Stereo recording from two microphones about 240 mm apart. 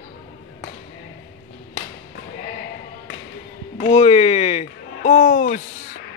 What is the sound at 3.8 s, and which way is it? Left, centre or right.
Speech, left.